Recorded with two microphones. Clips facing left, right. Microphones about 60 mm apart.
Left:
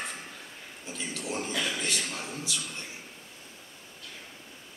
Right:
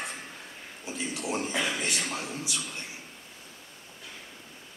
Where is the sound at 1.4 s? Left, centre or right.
Right.